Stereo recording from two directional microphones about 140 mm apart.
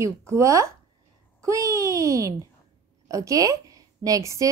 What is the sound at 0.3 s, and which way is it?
A woman's voice, 20° right (ahead or behind).